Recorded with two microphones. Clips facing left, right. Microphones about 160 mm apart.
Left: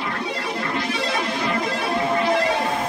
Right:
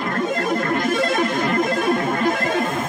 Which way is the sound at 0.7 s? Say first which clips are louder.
Right 4 dB; 50° right (ahead or behind).